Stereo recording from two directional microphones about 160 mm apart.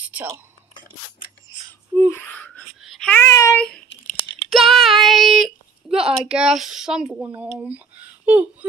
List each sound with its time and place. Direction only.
1.7 s a sound: 10° left (ahead or behind)
2.8 s babbling: centre (ahead or behind)
3.2 s child singing: 20° left (ahead or behind)
3.5 s a child's voice: 5° left (ahead or behind)
4.5 s a sound: centre (ahead or behind)
8.3 s speech: 10° right (ahead or behind)